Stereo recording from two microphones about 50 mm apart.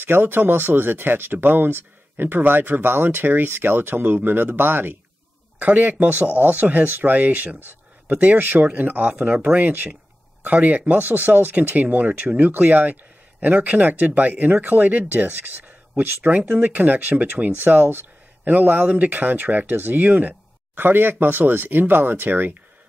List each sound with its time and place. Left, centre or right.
0.0 s speech: right
5.7 s speech: right
20.7 s speech: right